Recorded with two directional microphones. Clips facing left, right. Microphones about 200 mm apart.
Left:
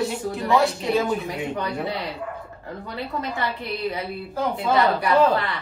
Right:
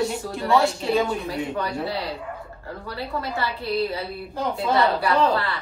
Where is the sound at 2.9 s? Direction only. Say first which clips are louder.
Even; 20° left (ahead or behind).